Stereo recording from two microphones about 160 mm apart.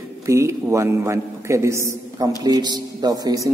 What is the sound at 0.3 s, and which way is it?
A man's voice, 15° right (ahead or behind).